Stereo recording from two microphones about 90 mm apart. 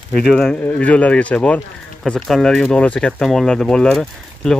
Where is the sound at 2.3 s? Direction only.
5° left (ahead or behind).